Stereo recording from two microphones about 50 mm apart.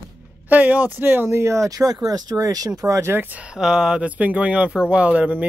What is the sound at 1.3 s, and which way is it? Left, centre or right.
Speech, right.